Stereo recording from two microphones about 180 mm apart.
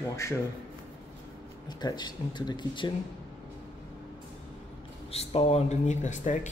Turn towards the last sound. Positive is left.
turn(degrees=40)  # may be behind; listen again after turning